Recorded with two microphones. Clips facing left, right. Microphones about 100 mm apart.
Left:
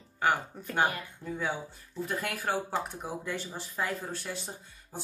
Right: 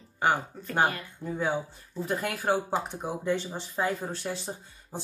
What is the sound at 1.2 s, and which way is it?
Speech, 30° right (ahead or behind).